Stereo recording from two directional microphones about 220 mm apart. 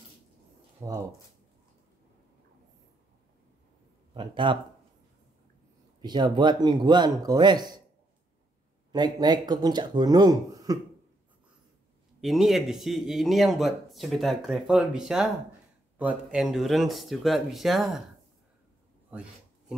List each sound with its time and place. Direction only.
0.7 s speech: 15° right (ahead or behind)
4.1 s speech: 20° right (ahead or behind)
5.9 s speech: 20° right (ahead or behind)
8.9 s speech: 20° right (ahead or behind)
12.2 s speech: centre (ahead or behind)
19.1 s speech: 5° right (ahead or behind)